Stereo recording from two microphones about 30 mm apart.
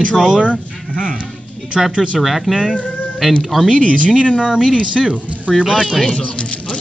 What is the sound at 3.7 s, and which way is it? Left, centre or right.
Speech, left.